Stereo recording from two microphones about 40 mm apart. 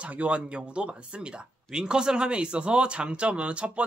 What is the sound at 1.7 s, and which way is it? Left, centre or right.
A man's voice, right.